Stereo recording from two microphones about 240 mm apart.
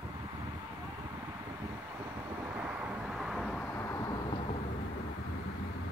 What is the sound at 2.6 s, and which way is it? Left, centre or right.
Vehicle, centre.